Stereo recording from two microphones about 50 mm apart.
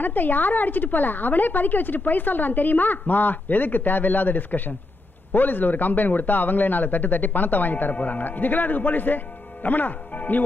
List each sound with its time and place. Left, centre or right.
0.0 s a man's voice: left